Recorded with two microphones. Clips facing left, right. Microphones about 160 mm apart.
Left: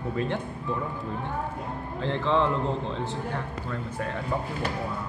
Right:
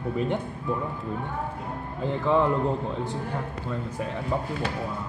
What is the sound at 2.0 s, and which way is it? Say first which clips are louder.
Speech: right 2 dB; 10° right (ahead or behind).